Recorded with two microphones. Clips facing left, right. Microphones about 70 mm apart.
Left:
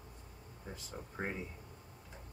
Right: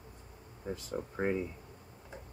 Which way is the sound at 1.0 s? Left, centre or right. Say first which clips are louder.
Right 10 dB; right.